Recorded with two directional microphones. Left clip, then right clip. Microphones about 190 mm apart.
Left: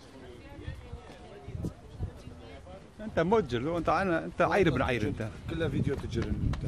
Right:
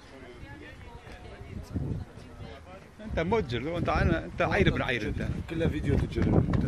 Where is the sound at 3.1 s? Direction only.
30° left (ahead or behind).